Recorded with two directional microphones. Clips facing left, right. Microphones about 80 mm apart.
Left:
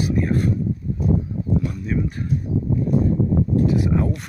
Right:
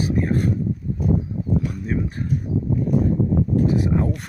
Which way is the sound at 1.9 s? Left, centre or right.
Right.